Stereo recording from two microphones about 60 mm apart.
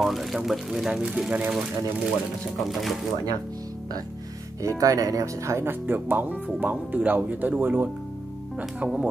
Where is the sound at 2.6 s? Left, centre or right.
Centre.